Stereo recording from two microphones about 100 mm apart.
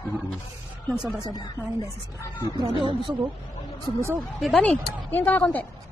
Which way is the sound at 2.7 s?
60° right (ahead or behind).